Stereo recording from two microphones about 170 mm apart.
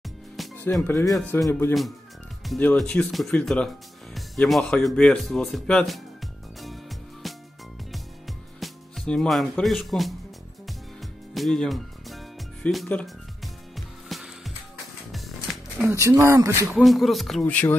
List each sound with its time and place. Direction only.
0.4 s music: centre (ahead or behind)
0.8 s speech: 15° left (ahead or behind)
1.1 s speech: 5° left (ahead or behind)
6.6 s music: centre (ahead or behind)
11.3 s music: centre (ahead or behind)
15.8 s speech: 15° right (ahead or behind)
16.7 s speech: centre (ahead or behind)